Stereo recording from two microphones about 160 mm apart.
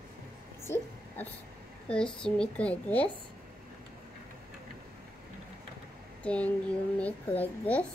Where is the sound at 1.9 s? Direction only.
5° left (ahead or behind).